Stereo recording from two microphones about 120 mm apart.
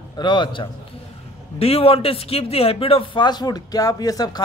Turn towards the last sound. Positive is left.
turn(degrees=30)  # may be behind; listen again after turning